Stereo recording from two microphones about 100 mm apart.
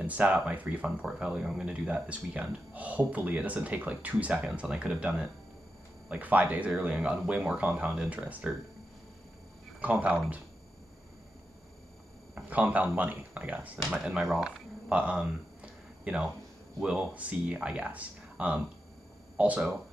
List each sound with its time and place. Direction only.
0.0 s speech: 15° right (ahead or behind)
9.8 s speech: 15° right (ahead or behind)
12.4 s speech: 15° right (ahead or behind)
14.2 s a sound: 5° right (ahead or behind)
16.8 s speech: 10° right (ahead or behind)